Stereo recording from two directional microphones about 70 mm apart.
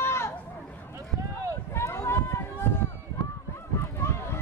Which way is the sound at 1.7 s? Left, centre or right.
Left.